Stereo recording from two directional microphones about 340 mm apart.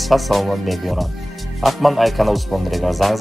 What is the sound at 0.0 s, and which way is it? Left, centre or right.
Speech, centre.